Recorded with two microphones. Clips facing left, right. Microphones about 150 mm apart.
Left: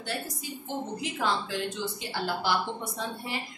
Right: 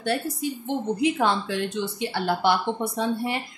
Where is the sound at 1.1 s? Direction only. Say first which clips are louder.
Right 6 dB; 65° right (ahead or behind).